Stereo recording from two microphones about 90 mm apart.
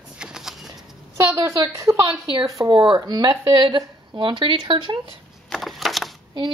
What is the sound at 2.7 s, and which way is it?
Speech, 65° right (ahead or behind).